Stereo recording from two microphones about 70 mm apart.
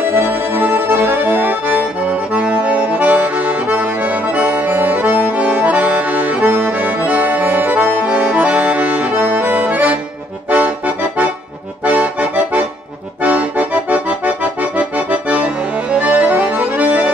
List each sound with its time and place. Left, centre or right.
0.3 s accordion: right
11.8 s accordion: centre